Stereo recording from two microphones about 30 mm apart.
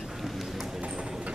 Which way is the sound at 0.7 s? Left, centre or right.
Right.